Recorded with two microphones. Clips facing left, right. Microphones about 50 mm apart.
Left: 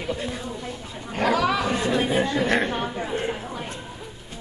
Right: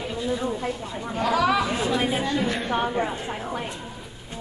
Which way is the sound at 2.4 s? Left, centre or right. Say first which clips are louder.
Left 5 dB; left.